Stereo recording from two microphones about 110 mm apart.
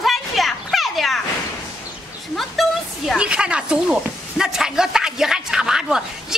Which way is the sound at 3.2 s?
10° right (ahead or behind).